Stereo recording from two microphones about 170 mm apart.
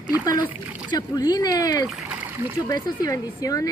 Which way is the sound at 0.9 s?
25° left (ahead or behind).